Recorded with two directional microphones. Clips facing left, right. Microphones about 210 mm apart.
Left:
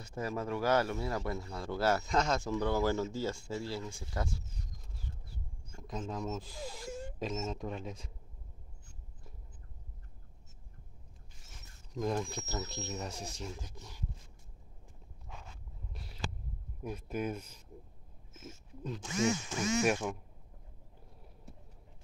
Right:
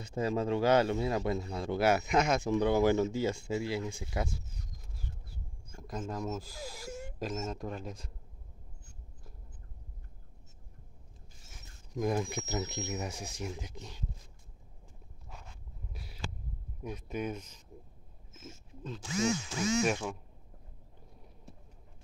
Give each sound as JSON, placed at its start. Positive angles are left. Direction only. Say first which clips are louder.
{"t": 0.0, "sound": "speech", "louder": "right 5 dB", "side_deg": -20}
{"t": 5.8, "sound": "speech", "louder": "right 1 dB", "side_deg": -5}
{"t": 11.5, "sound": "speech", "louder": "right 3 dB", "side_deg": -10}
{"t": 16.8, "sound": "speech", "louder": "even", "side_deg": 5}
{"t": 19.8, "sound": "speech", "louder": "even", "side_deg": 10}